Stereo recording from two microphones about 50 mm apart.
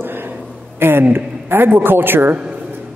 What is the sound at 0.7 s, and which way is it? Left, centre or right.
A woman's voice, right.